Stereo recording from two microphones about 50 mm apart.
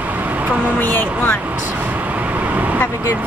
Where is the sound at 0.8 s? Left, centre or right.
Left.